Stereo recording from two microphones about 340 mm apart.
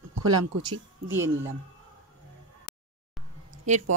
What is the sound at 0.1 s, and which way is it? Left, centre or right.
Speech, right.